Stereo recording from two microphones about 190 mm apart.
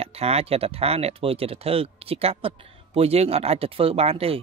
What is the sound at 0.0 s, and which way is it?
Speech, 30° right (ahead or behind).